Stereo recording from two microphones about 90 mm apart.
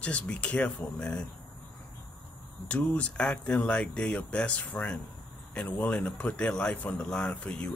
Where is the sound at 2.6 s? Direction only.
15° left (ahead or behind).